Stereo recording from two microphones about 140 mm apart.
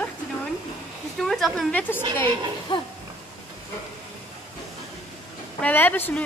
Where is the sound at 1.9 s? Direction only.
15° left (ahead or behind).